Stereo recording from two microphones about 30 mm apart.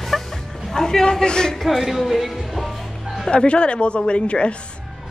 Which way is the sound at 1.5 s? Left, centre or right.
Centre.